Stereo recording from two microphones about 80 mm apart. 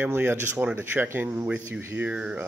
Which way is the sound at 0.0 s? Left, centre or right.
Right.